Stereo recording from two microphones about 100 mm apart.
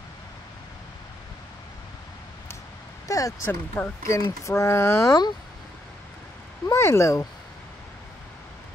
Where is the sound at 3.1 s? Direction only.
35° left (ahead or behind).